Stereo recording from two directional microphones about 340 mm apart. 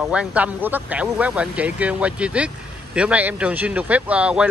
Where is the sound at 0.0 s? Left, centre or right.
Centre.